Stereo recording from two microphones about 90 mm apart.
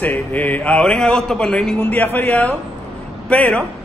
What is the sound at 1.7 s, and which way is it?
A man's voice, 20° left (ahead or behind).